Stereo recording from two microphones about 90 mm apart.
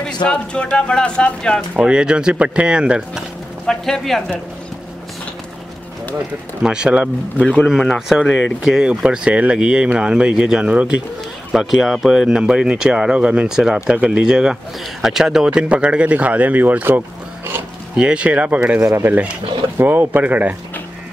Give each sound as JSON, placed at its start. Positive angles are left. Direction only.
{"t": 0.0, "sound": "speech", "side_deg": 10}
{"t": 1.8, "sound": "speech", "side_deg": -10}
{"t": 3.6, "sound": "speech", "side_deg": 5}
{"t": 6.6, "sound": "speech", "side_deg": -10}
{"t": 7.6, "sound": "speech", "side_deg": 5}
{"t": 11.5, "sound": "speech", "side_deg": 0}